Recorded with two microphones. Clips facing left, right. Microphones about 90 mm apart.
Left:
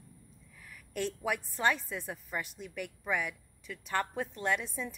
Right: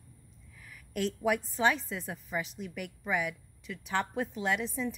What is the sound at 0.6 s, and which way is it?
A woman's voice, centre (ahead or behind).